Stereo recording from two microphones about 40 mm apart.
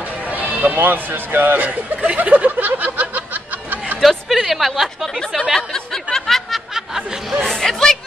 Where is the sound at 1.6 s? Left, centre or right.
Right.